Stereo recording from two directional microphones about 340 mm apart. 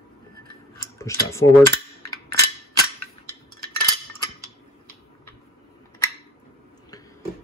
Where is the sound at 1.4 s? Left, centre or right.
Left.